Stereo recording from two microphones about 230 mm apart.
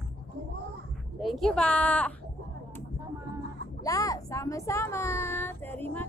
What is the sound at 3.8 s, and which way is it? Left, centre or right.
A child's voice, centre.